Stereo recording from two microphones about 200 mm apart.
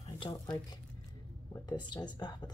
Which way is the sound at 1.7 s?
20° left (ahead or behind).